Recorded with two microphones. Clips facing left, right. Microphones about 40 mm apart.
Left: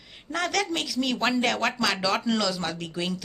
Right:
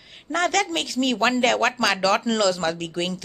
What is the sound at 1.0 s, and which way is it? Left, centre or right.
Speech, centre.